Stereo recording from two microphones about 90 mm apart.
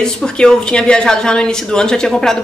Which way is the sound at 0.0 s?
5° left (ahead or behind).